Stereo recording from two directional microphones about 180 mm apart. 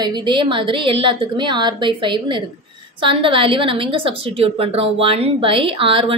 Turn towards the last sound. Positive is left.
turn(degrees=-30)  # may be behind; listen again after turning